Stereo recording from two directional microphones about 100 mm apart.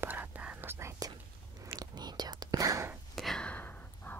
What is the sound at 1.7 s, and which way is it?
Whispering, 45° right (ahead or behind).